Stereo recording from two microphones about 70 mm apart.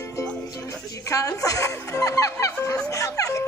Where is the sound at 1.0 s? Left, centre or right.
Left.